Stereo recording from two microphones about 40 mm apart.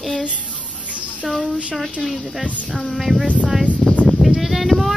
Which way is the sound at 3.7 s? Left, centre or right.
Right.